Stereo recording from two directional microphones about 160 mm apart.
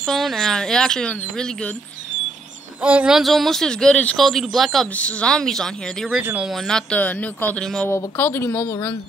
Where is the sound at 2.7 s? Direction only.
10° right (ahead or behind).